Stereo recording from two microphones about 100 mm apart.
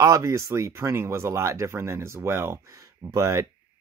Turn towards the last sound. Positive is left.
turn(degrees=-30)  # may be behind; listen again after turning